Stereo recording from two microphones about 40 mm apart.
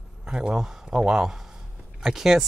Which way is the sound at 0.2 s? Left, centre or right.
Right.